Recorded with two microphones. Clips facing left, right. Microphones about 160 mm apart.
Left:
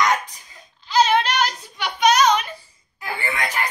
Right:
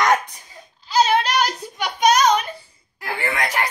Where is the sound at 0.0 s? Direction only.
55° right (ahead or behind).